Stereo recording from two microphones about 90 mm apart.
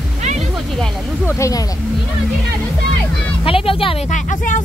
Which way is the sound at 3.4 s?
90° left.